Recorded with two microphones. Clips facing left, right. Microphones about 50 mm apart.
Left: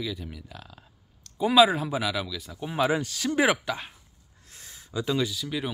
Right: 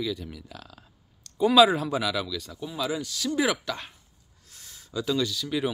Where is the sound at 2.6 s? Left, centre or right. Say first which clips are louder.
Left 6 dB; left.